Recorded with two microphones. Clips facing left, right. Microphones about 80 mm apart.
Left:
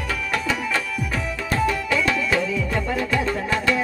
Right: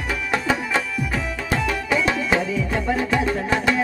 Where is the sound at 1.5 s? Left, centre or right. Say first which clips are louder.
Even; right.